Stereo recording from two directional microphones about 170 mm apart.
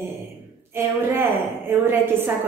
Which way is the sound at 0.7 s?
15° right (ahead or behind).